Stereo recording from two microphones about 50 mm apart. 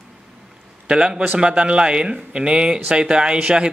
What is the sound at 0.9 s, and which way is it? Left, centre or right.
Speech, centre.